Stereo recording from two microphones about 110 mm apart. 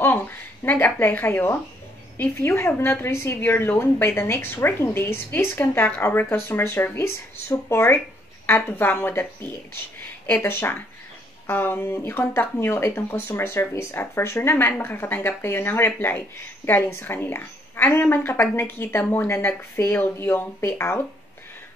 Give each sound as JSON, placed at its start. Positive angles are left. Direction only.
{"t": 0.7, "sound": "speech", "side_deg": 20}